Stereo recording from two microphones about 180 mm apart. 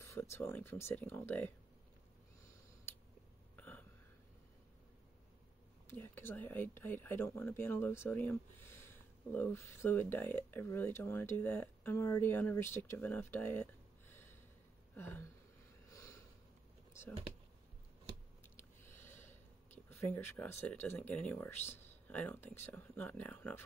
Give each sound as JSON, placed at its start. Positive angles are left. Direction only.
{"t": 0.0, "sound": "speech", "side_deg": 15}
{"t": 3.5, "sound": "burping", "side_deg": 10}
{"t": 5.9, "sound": "speech", "side_deg": 10}
{"t": 15.9, "sound": "a sound", "side_deg": 15}
{"t": 18.6, "sound": "speech", "side_deg": 15}